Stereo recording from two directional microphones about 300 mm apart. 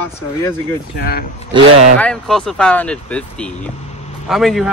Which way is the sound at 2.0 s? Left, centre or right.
Centre.